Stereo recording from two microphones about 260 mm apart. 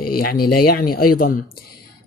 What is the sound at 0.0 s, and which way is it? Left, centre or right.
Speech, left.